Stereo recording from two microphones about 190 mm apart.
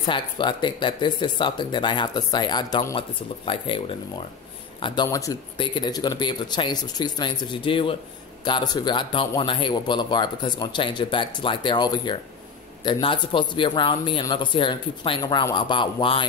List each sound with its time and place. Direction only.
0.0 s speech: 25° left (ahead or behind)